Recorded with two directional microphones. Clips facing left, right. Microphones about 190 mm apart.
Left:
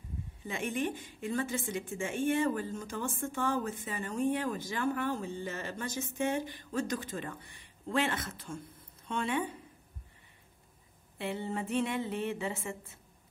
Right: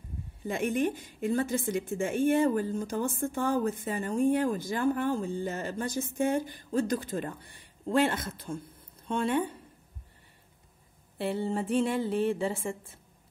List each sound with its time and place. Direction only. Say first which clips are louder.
0.5 s speech: right 6 dB; 50° right (ahead or behind)
1.6 s speech: right 6 dB; 55° right (ahead or behind)
2.4 s speech: right 5 dB; 35° right (ahead or behind)
4.2 s speech: right 5 dB; 50° right (ahead or behind)
11.1 s speech: right 5 dB; 35° right (ahead or behind)